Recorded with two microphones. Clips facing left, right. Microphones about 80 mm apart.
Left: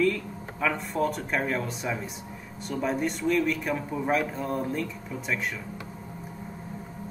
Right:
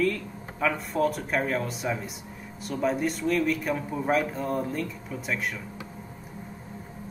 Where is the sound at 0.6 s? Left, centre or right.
Centre.